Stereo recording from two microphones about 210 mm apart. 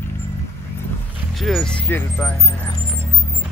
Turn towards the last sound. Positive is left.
turn(degrees=10)  # may be behind; listen again after turning